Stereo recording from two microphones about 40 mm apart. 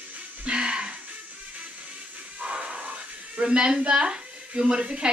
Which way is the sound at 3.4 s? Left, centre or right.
Right.